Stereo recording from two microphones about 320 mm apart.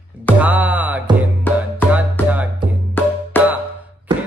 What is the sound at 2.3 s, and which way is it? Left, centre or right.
Music, centre.